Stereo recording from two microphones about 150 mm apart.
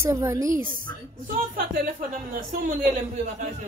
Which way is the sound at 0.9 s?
15° left (ahead or behind).